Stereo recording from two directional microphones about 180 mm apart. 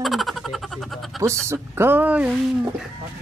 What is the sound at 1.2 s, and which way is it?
Speech, 15° right (ahead or behind).